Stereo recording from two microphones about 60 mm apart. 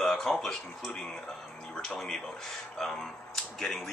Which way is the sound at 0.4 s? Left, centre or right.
Centre.